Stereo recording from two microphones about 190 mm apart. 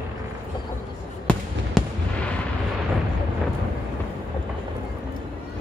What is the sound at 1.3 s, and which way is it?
Fireworks, 5° left (ahead or behind).